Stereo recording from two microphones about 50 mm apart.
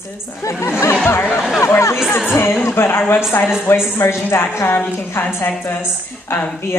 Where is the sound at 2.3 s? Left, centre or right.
Left.